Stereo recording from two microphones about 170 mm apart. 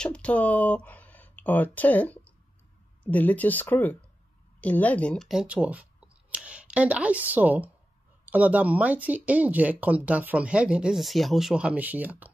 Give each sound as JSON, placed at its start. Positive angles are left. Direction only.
{"t": 0.0, "sound": "speech", "side_deg": 5}